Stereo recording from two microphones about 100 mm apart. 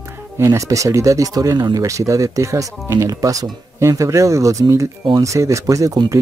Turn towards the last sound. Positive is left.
turn(degrees=-35)  # may be behind; listen again after turning